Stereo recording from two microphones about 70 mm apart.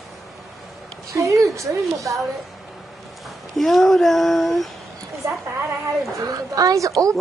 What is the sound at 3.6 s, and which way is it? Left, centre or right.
Speech, centre.